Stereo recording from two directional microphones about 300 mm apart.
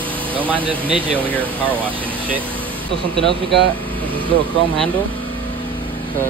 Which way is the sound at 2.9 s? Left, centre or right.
Centre.